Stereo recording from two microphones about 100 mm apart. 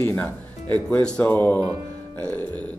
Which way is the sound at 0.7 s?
15° left (ahead or behind).